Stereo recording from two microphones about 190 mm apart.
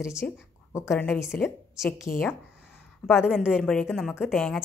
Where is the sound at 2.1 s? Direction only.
50° left (ahead or behind).